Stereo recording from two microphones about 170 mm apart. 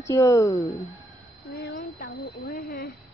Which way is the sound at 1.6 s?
50° left (ahead or behind).